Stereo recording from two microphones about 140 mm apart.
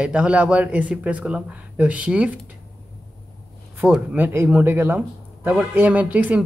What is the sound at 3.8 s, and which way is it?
Speech, 10° right (ahead or behind).